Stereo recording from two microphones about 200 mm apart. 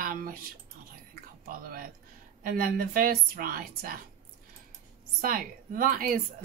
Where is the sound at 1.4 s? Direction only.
45° right (ahead or behind).